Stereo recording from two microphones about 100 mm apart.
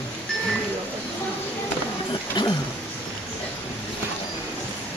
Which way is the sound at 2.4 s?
45° left (ahead or behind).